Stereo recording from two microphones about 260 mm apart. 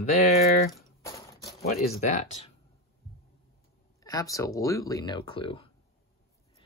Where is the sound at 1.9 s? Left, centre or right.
Left.